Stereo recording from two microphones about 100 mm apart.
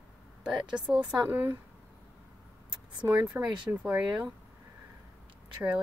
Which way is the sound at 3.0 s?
20° right (ahead or behind).